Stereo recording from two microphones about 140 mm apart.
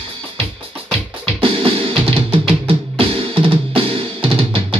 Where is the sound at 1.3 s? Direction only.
40° right (ahead or behind).